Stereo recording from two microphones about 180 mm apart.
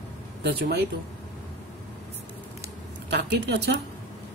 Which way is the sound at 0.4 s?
60° right (ahead or behind).